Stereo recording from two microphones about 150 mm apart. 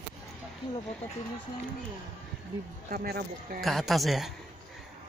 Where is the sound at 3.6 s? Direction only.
Centre (ahead or behind).